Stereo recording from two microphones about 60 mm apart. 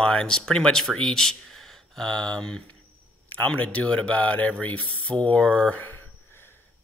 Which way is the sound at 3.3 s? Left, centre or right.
Left.